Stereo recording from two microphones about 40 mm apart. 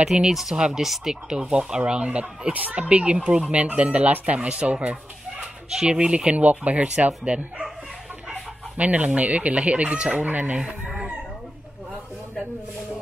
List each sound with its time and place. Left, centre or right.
0.0 s speech: right
0.3 s speech: centre
0.6 s speech: centre
0.8 s speech: centre
1.3 s speech: right
3.4 s speech: right
6.3 s speech: right
8.7 s speech: right
10.1 s speech: right